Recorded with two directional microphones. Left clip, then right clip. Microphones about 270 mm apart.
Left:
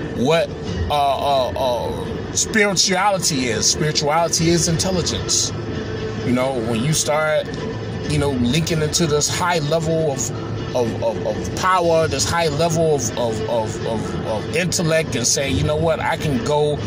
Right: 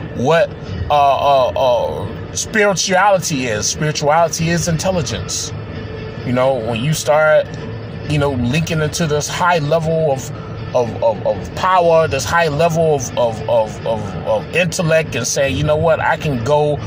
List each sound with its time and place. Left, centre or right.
0.2 s speech: right
11.6 s speech: centre